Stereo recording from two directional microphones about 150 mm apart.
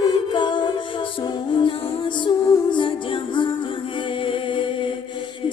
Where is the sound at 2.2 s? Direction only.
30° left (ahead or behind).